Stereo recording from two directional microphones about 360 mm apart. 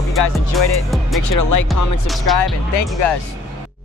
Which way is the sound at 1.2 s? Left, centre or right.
Left.